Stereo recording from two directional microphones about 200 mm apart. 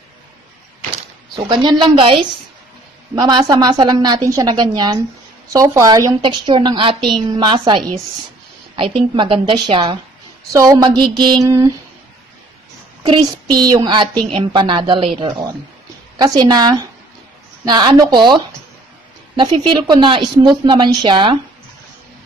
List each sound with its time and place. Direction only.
1.3 s a woman's voice: 25° right (ahead or behind)
13.6 s a woman's voice: 20° right (ahead or behind)